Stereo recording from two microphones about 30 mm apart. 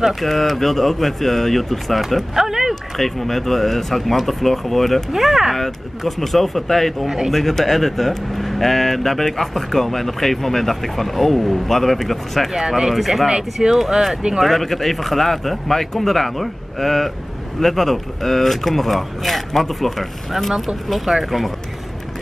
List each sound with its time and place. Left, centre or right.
0.0 s speech: centre
2.3 s a sound: centre
3.0 s speech: centre
5.1 s speech: centre
5.6 s speech: centre
12.5 s speech: centre
12.9 s speech: centre
14.4 s speech: centre